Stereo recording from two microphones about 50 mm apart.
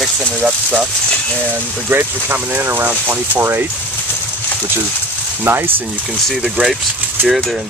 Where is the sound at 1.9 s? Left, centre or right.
Right.